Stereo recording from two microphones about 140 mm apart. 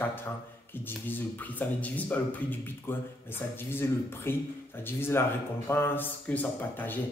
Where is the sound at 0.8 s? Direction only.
15° left (ahead or behind).